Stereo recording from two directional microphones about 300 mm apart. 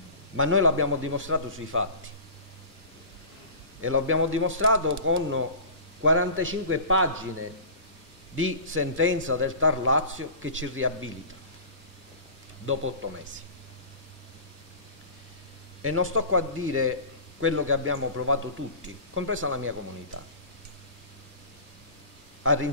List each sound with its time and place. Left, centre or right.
0.4 s speech: right
3.8 s a man's voice: right
15.8 s speech: right
22.4 s speech: right